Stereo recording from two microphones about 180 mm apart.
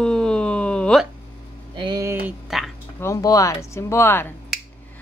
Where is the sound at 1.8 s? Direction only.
25° right (ahead or behind).